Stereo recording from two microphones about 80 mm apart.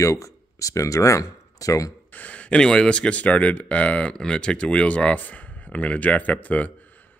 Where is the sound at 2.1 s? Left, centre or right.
Centre.